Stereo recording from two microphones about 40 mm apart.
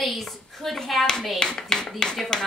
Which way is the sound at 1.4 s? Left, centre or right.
Centre.